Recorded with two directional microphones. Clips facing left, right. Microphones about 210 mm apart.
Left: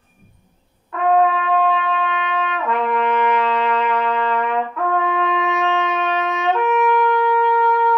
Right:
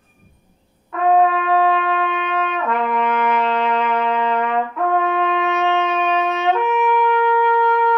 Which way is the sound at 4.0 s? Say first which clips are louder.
Right 1 dB; 15° right (ahead or behind).